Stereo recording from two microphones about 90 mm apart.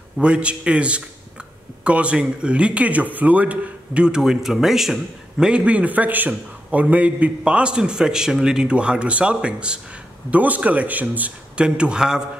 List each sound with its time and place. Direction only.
0.2 s a man's voice: 10° right (ahead or behind)